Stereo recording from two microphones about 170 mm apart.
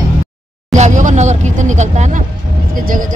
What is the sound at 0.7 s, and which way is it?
Speech, 45° right (ahead or behind).